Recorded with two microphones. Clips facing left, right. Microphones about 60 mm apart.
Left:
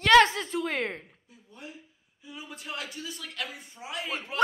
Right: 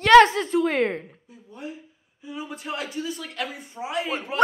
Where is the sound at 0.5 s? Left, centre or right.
Centre.